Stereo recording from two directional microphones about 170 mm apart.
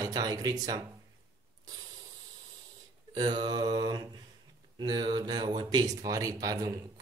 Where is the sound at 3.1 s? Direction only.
25° right (ahead or behind).